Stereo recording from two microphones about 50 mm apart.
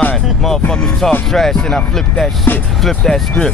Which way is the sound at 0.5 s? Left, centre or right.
Centre.